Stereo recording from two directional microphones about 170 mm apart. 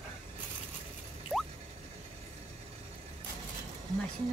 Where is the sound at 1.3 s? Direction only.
5° left (ahead or behind).